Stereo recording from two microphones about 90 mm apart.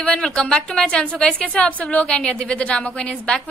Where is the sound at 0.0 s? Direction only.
10° left (ahead or behind).